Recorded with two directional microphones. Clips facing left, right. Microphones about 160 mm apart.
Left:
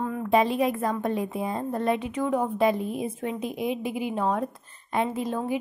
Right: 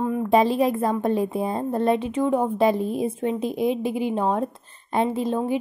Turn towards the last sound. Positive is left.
turn(degrees=-25)  # may be behind; listen again after turning